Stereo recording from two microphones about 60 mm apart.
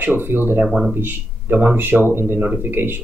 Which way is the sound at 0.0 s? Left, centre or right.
Right.